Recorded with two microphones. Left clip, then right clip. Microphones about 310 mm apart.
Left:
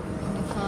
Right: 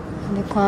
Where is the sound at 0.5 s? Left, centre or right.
Right.